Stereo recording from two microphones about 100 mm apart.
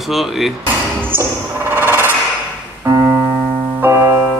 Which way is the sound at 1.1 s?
20° right (ahead or behind).